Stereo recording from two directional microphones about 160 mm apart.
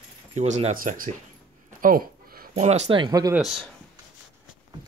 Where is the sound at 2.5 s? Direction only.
45° right (ahead or behind).